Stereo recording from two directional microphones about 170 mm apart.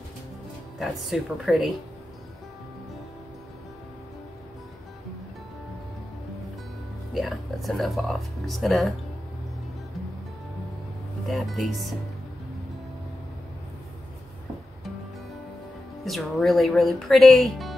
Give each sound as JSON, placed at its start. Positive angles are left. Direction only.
{"t": 0.7, "sound": "speech", "side_deg": 0}
{"t": 7.2, "sound": "speech", "side_deg": 0}
{"t": 11.2, "sound": "speech", "side_deg": 0}
{"t": 16.0, "sound": "speech", "side_deg": 0}